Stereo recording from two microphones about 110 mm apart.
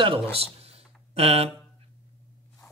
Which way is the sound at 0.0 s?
60° right (ahead or behind).